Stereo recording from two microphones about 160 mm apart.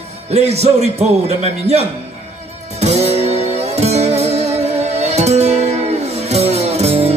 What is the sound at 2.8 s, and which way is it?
Music, 40° right (ahead or behind).